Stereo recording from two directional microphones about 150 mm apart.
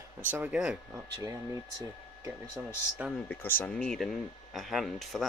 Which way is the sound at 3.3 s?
10° left (ahead or behind).